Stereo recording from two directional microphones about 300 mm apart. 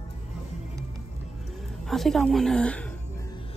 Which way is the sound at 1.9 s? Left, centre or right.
Centre.